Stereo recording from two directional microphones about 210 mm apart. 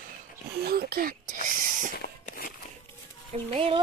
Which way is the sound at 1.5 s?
40° right (ahead or behind).